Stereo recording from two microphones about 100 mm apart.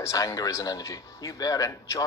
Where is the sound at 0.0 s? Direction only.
35° left (ahead or behind).